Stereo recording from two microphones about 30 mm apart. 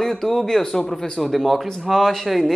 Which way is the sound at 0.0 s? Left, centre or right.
Centre.